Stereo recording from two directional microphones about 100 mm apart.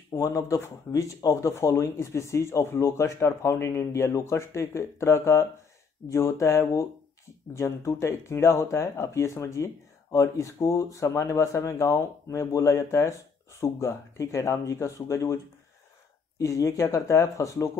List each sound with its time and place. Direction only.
0.1 s speech: 35° left (ahead or behind)